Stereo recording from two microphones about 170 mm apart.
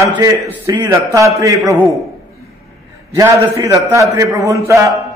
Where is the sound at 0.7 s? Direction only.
20° right (ahead or behind).